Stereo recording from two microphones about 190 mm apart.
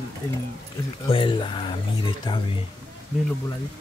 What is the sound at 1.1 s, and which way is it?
Speech, 25° left (ahead or behind).